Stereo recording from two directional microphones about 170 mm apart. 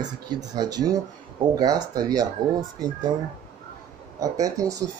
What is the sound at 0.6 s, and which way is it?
Speech, 25° right (ahead or behind).